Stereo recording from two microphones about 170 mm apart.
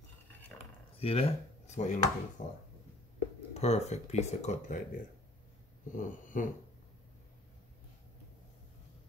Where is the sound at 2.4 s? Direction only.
45° left (ahead or behind).